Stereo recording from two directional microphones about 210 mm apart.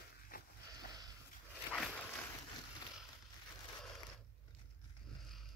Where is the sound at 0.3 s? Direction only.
45° left (ahead or behind).